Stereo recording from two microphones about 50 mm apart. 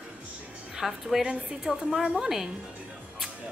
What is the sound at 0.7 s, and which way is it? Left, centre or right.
A woman's voice, centre.